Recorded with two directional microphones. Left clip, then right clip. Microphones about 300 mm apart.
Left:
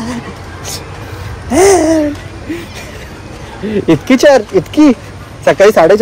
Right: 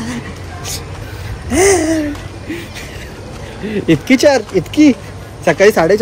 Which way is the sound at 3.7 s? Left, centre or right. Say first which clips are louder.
Left 3 dB; centre.